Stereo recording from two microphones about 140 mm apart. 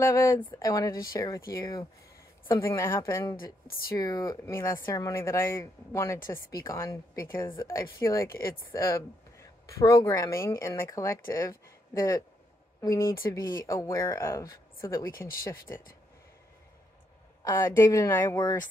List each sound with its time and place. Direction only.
0.0 s a woman's voice: 20° left (ahead or behind)
17.5 s a woman's voice: 20° left (ahead or behind)